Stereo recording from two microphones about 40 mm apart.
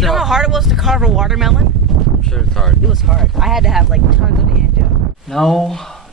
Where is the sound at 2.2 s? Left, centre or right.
Centre.